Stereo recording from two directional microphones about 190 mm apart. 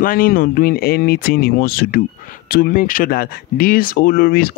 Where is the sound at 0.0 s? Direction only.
50° left (ahead or behind).